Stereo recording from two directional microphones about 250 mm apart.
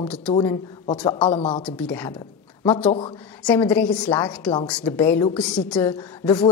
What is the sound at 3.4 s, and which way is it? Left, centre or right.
Speech, centre.